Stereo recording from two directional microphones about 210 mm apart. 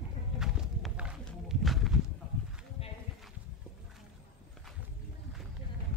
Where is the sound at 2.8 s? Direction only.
30° left (ahead or behind).